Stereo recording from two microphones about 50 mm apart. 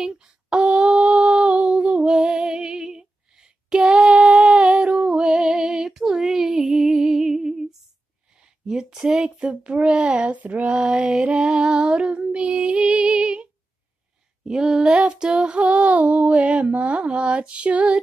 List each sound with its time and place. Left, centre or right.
0.1 s female singing: right
8.6 s music: centre